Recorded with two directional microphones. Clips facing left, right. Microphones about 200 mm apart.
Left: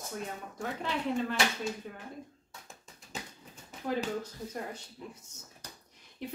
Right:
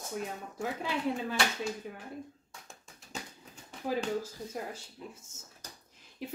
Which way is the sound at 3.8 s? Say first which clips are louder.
Right 1 dB; 5° right (ahead or behind).